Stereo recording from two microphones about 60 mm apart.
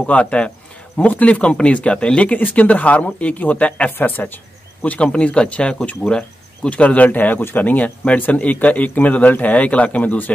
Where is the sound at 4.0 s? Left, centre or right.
Left.